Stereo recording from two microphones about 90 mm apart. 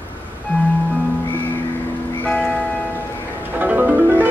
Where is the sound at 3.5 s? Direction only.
20° right (ahead or behind).